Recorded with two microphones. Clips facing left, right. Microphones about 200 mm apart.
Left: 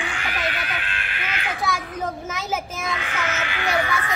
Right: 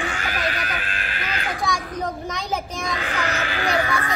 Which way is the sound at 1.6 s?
5° left (ahead or behind).